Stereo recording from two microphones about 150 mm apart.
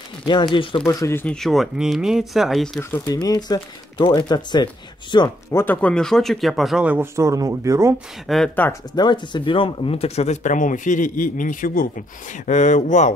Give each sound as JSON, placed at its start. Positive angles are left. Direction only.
{"t": 0.3, "sound": "speech", "side_deg": 30}
{"t": 0.8, "sound": "speech", "side_deg": 20}
{"t": 1.3, "sound": "speech", "side_deg": 0}
{"t": 3.1, "sound": "speech", "side_deg": 25}
{"t": 5.5, "sound": "speech", "side_deg": 15}
{"t": 8.3, "sound": "speech", "side_deg": 0}
{"t": 8.9, "sound": "speech", "side_deg": 30}